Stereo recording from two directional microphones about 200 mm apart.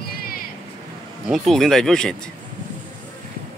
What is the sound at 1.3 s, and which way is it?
Speech, centre (ahead or behind).